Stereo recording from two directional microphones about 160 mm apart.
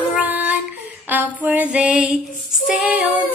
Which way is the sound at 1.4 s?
10° right (ahead or behind).